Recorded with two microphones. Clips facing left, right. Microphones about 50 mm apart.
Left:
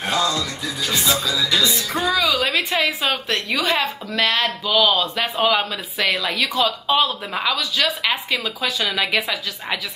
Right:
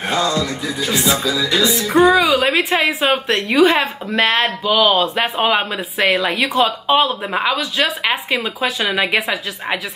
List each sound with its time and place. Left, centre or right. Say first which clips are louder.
0.0 s music: right 3 dB; centre
0.9 s a woman's voice: right 3 dB; right
1.2 s music: right 3 dB; centre
2.1 s a woman's voice: right 5 dB; right